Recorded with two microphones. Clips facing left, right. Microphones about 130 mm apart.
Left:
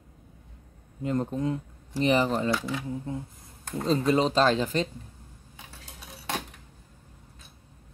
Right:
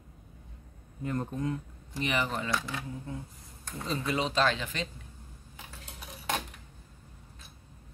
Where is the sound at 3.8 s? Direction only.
35° left (ahead or behind).